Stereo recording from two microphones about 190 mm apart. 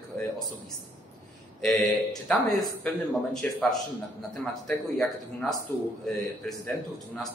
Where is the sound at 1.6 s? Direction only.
5° left (ahead or behind).